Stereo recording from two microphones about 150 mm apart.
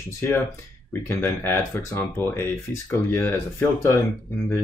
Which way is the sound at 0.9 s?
15° left (ahead or behind).